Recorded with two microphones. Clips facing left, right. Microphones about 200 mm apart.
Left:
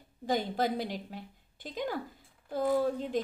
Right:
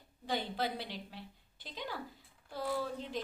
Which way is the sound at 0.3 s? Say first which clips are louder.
Left 6 dB; 45° left (ahead or behind).